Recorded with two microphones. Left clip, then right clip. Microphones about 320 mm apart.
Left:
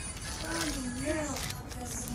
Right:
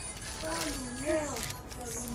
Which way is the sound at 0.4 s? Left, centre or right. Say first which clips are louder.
Even; centre.